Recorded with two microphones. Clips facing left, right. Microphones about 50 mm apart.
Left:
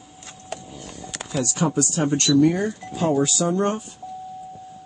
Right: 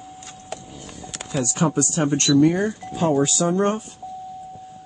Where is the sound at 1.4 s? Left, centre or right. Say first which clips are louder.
Right 1 dB; right.